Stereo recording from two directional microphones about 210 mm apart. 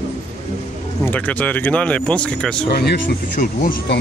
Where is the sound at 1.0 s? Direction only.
10° left (ahead or behind).